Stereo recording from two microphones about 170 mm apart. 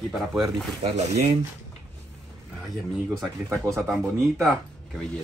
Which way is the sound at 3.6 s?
15° right (ahead or behind).